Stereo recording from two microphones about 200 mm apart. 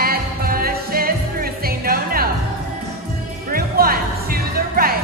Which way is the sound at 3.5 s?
45° right (ahead or behind).